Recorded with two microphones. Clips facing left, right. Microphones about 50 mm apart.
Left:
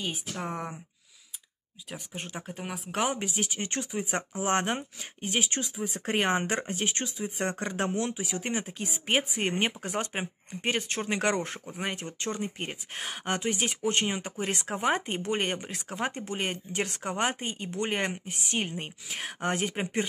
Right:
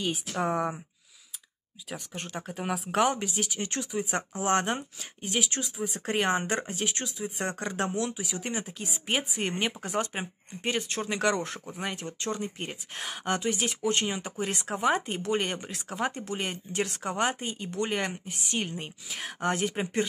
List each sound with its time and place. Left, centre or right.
0.0 s speech: centre
1.9 s speech: centre
2.5 s speech: centre
3.2 s speech: left